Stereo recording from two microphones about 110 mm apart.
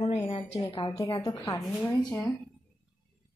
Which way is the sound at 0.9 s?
50° left (ahead or behind).